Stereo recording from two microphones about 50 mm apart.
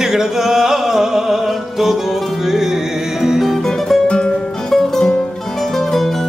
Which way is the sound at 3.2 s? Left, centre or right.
Centre.